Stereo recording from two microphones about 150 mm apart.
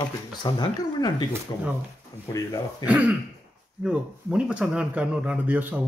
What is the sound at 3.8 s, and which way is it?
Speech, 5° right (ahead or behind).